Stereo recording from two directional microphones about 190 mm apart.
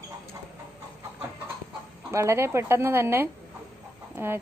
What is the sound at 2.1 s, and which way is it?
A woman's voice, 15° right (ahead or behind).